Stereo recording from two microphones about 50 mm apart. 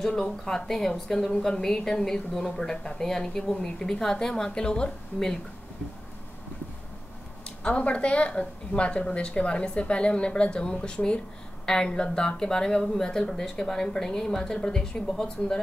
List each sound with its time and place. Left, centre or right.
0.0 s speech: centre
7.4 s a woman's voice: left